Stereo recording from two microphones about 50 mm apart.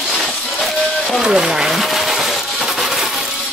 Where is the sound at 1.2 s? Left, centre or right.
Centre.